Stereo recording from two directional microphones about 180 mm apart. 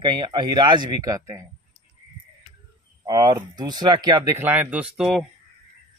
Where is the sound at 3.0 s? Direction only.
20° right (ahead or behind); by 5.2 s 5° right (ahead or behind).